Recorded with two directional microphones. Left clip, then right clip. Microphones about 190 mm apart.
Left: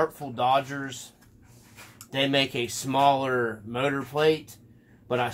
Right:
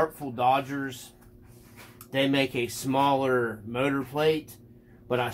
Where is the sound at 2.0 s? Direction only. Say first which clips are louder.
Left 1 dB; 25° left (ahead or behind).